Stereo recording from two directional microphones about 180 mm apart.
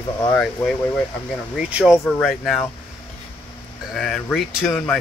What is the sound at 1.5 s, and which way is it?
Speech, 5° right (ahead or behind).